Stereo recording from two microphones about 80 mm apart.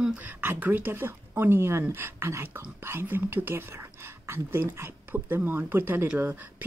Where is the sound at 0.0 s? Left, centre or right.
Centre.